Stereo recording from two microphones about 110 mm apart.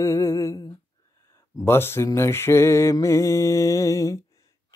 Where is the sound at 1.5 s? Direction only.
20° left (ahead or behind).